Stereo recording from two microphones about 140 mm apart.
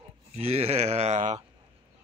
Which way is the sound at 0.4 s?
45° right (ahead or behind).